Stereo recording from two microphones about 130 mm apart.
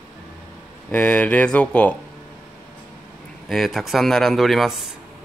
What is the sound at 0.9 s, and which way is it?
Speech, 10° left (ahead or behind).